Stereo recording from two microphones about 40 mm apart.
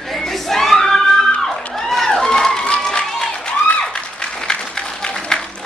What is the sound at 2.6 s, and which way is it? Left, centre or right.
Applause, left.